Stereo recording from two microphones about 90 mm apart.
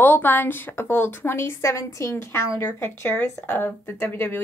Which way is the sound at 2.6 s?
20° left (ahead or behind).